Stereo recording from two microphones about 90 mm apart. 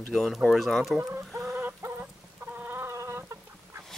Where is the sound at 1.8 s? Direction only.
30° right (ahead or behind).